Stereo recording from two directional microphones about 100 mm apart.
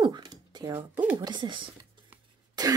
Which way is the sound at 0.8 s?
15° right (ahead or behind).